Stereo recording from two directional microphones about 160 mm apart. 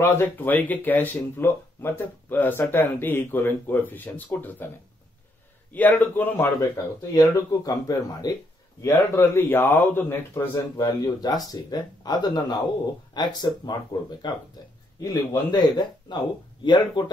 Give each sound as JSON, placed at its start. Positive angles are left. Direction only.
{"t": 0.0, "sound": "speech", "side_deg": 15}
{"t": 5.7, "sound": "speech", "side_deg": 10}
{"t": 7.1, "sound": "speech", "side_deg": 25}
{"t": 10.5, "sound": "speech", "side_deg": 25}
{"t": 15.0, "sound": "speech", "side_deg": 25}